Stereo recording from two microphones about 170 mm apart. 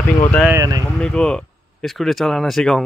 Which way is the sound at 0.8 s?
5° left (ahead or behind).